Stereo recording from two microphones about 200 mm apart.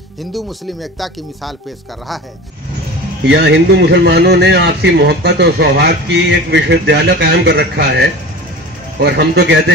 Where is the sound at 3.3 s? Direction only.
60° right (ahead or behind).